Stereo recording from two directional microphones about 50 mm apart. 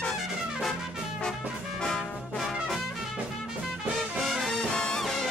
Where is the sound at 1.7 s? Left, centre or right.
Centre.